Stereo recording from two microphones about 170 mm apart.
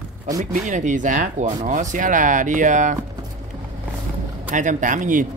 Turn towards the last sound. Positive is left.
turn(degrees=-50)  # may be behind; listen again after turning